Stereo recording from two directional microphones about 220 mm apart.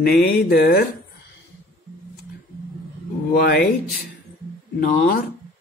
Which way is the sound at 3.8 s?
Centre (ahead or behind).